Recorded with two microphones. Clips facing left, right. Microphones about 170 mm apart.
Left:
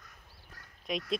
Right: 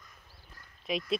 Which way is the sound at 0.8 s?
Centre (ahead or behind).